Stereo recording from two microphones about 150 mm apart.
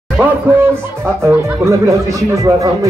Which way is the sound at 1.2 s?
20° right (ahead or behind).